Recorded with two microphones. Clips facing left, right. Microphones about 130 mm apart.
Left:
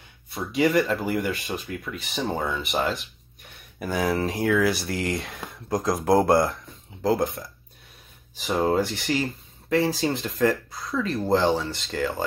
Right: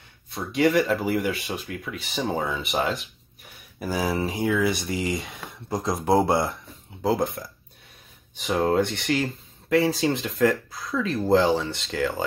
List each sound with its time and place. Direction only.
0.3 s speech: centre (ahead or behind)